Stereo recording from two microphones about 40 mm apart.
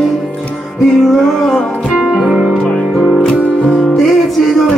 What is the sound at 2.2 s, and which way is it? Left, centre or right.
Music, centre.